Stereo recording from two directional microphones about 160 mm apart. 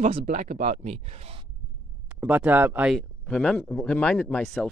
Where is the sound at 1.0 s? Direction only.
40° right (ahead or behind).